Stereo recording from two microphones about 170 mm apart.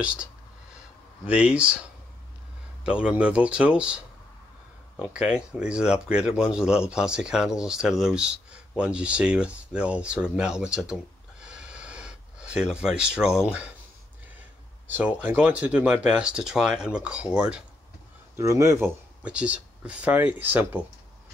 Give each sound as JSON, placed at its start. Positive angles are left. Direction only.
{"t": 0.0, "sound": "speech", "side_deg": -5}
{"t": 2.8, "sound": "speech", "side_deg": -5}
{"t": 14.9, "sound": "speech", "side_deg": -10}
{"t": 18.3, "sound": "speech", "side_deg": -15}